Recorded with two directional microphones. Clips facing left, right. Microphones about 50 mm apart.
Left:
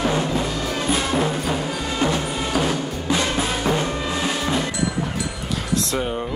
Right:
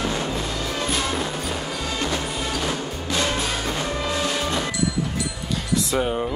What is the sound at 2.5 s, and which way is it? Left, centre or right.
Music, centre.